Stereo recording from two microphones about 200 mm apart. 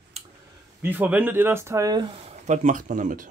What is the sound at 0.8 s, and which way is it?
Speech, 10° right (ahead or behind).